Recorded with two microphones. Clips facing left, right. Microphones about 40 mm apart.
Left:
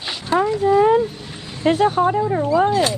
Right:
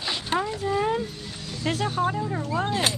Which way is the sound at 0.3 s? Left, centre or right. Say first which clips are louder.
Left 8 dB; right.